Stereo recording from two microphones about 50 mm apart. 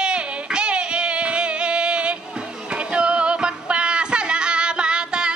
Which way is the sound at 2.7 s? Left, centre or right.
Right.